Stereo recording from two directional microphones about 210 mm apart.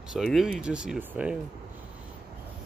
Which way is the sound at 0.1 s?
Centre (ahead or behind).